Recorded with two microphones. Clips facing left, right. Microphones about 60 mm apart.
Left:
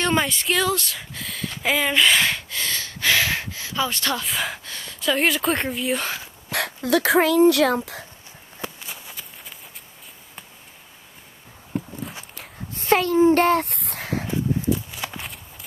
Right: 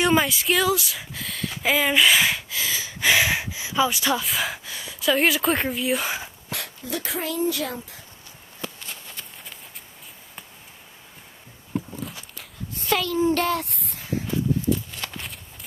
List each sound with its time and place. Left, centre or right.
0.0 s speech: centre
6.5 s speech: left
8.5 s walk: centre
12.8 s a sound: left
13.7 s a sound: left
14.7 s walk: centre